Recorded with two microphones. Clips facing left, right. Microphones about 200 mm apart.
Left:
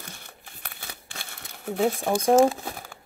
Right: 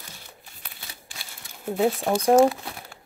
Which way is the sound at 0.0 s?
60° left (ahead or behind).